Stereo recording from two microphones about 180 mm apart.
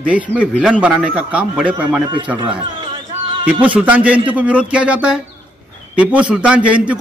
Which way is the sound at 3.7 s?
5° right (ahead or behind).